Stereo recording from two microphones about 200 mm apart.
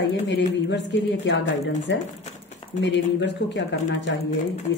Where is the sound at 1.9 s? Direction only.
65° left (ahead or behind).